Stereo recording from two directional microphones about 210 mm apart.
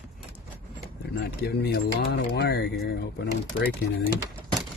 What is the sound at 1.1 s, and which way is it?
Speech, 50° left (ahead or behind).